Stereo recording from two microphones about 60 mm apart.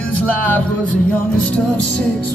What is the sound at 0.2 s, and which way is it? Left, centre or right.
Music, left.